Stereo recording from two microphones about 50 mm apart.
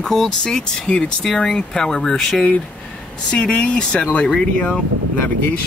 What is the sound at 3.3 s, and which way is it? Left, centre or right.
Speech, left.